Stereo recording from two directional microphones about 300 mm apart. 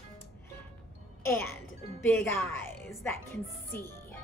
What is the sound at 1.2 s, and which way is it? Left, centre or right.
A child's voice, centre.